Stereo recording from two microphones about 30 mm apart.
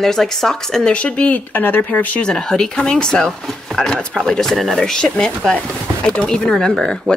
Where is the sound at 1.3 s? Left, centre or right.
Left.